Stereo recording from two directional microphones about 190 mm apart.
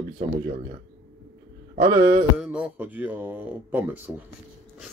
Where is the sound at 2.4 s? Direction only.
5° right (ahead or behind).